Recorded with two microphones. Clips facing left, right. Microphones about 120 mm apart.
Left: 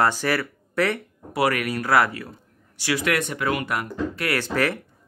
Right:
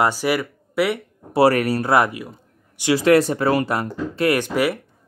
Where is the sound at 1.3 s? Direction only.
30° right (ahead or behind); by 2.3 s 15° right (ahead or behind).